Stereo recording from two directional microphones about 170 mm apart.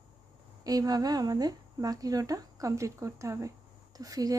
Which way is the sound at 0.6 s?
20° right (ahead or behind).